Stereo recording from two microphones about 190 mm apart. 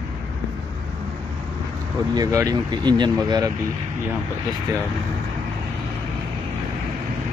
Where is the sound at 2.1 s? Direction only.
20° right (ahead or behind).